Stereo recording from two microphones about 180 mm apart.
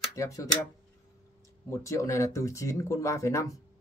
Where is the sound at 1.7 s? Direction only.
15° left (ahead or behind).